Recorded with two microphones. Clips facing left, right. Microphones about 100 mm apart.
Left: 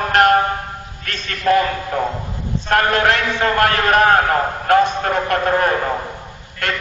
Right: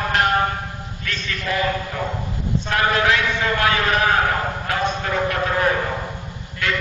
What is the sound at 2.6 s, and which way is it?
Train, 55° left (ahead or behind).